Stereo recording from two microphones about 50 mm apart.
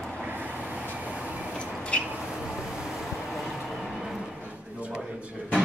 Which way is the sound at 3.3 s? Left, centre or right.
Centre.